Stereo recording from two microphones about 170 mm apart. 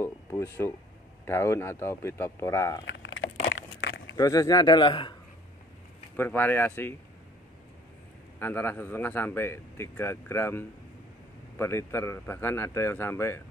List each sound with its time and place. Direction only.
0.0 s a sound: 15° left (ahead or behind)
1.2 s a man's voice: 15° left (ahead or behind)
2.8 s a sound: 90° left
4.1 s a man's voice: 20° left (ahead or behind)
6.1 s a man's voice: 10° left (ahead or behind)
8.4 s a man's voice: 10° left (ahead or behind)